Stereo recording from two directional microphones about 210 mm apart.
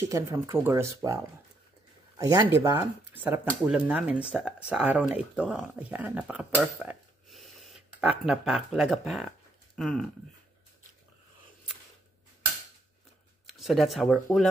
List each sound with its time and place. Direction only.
0.1 s speech: 15° right (ahead or behind); by 10.1 s centre (ahead or behind)
13.5 s speech: centre (ahead or behind)